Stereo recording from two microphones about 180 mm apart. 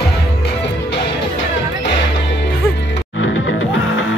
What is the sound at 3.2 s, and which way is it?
Music, 90° left.